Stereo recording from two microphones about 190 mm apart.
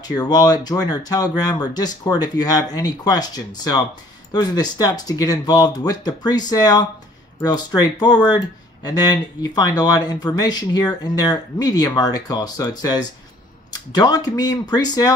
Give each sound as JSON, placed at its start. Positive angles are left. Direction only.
{"t": 0.1, "sound": "speech", "side_deg": 20}